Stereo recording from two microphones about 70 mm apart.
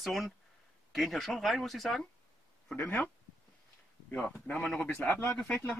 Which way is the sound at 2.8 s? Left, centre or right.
Centre.